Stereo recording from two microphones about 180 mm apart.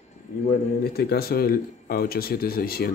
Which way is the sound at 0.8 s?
60° left (ahead or behind).